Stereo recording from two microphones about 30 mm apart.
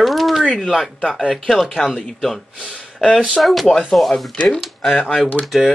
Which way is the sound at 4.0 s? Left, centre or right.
Left.